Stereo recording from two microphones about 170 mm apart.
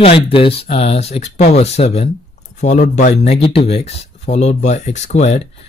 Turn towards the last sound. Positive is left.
turn(degrees=40)  # may be behind; listen again after turning